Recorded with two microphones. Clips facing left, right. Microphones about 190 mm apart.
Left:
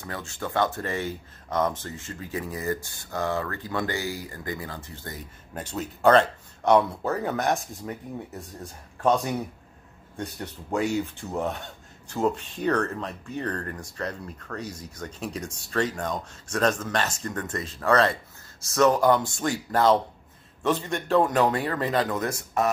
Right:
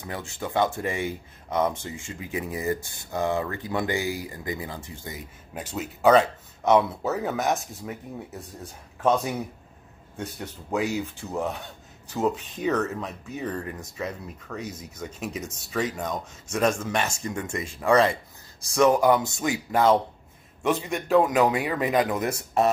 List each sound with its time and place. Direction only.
0.0 s speech: 15° right (ahead or behind)
5.0 s speech: 5° right (ahead or behind); by 22.7 s 25° right (ahead or behind)